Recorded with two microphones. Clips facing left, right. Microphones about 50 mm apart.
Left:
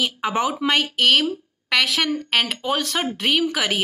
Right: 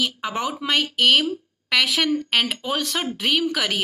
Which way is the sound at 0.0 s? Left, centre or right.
Centre.